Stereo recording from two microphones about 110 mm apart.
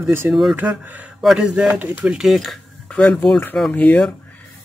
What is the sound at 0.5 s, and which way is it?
Speech, 15° right (ahead or behind).